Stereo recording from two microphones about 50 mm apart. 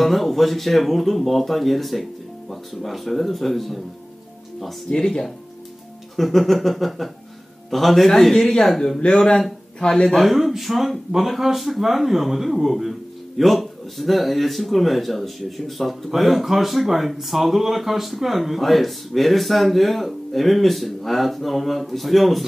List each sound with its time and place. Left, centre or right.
0.0 s speech: centre
4.9 s speech: centre
8.5 s speech: centre
8.7 s speech: centre
10.0 s speech: centre